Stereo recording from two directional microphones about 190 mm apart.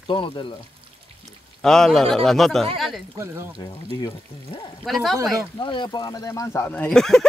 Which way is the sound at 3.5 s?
20° left (ahead or behind).